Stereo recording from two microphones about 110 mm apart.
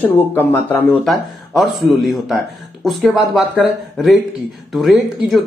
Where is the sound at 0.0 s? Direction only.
20° left (ahead or behind).